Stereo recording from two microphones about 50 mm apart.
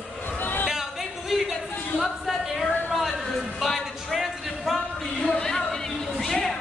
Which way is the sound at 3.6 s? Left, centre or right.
Centre.